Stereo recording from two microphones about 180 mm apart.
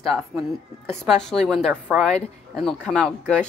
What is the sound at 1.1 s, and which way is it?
A woman's voice, 5° left (ahead or behind).